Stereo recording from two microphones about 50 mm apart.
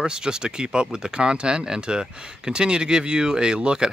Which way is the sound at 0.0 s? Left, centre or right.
Centre.